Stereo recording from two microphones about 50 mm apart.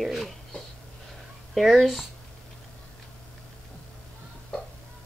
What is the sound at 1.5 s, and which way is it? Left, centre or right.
Speech, centre.